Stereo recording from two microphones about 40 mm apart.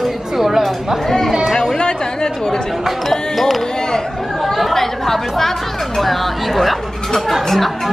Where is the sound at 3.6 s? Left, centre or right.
Centre.